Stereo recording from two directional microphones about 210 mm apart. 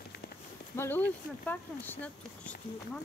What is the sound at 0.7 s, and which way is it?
Speech, 10° left (ahead or behind).